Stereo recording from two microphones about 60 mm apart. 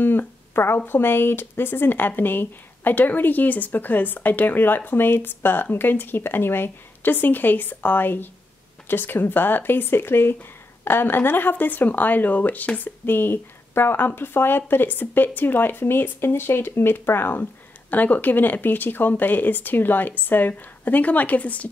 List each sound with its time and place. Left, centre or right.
0.0 s speech: left